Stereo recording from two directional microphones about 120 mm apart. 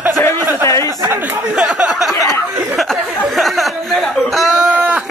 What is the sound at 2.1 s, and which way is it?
Speech, 30° left (ahead or behind).